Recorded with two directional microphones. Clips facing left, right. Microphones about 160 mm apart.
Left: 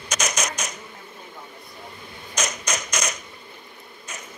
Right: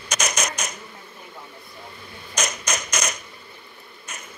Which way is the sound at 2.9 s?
55° right (ahead or behind).